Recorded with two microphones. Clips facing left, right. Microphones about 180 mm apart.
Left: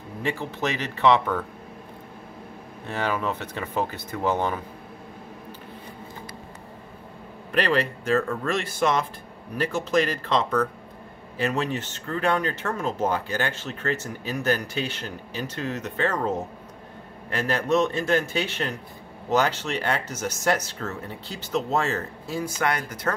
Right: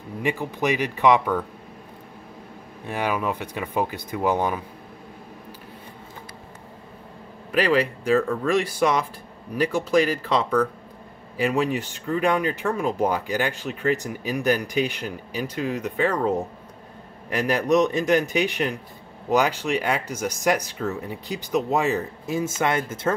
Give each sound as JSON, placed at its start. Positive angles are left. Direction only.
{"t": 0.2, "sound": "speech", "side_deg": -15}
{"t": 2.9, "sound": "speech", "side_deg": -10}
{"t": 7.5, "sound": "speech", "side_deg": -10}